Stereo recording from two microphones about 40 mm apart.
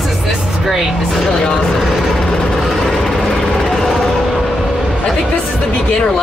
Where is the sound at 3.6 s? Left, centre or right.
Centre.